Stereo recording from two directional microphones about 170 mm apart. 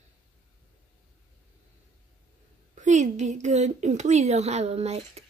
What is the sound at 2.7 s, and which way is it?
Speech, 45° right (ahead or behind).